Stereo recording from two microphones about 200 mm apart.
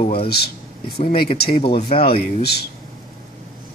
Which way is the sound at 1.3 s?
50° left (ahead or behind).